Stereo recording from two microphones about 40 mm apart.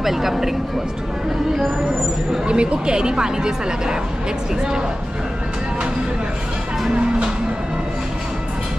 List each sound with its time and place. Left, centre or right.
0.0 s speech: centre
2.4 s speech: right